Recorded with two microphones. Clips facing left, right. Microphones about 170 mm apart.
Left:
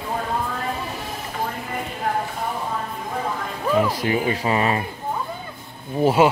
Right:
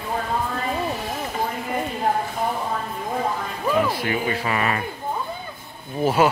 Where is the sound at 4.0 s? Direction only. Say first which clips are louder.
Left 2 dB; 25° left (ahead or behind).